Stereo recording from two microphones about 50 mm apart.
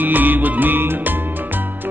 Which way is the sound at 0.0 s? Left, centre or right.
Right.